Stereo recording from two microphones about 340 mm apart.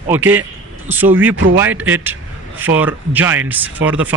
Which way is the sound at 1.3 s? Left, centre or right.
Right.